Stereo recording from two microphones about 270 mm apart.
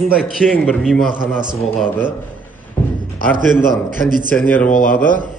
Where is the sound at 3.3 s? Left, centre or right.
Right.